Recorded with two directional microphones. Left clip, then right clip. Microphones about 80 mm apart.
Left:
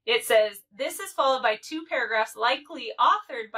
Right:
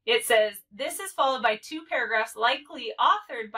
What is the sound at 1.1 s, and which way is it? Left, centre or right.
Speech, right.